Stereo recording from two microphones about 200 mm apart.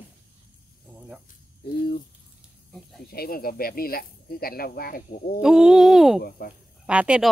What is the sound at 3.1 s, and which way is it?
Speech, 50° left (ahead or behind).